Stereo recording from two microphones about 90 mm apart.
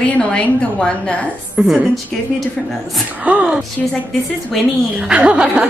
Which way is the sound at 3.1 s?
15° right (ahead or behind).